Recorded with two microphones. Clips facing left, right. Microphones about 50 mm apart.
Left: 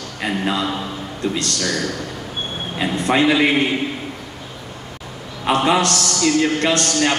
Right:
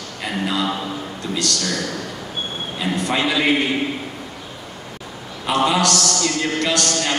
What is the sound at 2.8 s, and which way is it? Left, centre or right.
Speech, left.